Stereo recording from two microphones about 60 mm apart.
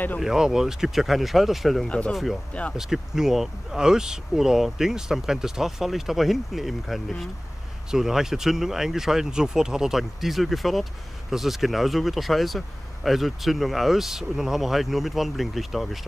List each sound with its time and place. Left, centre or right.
0.2 s speech: centre
1.9 s speech: centre
2.8 s speech: centre